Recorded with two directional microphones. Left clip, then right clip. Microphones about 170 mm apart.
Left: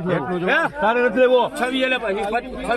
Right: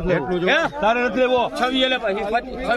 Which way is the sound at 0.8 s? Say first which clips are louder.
Left 3 dB; 25° left (ahead or behind).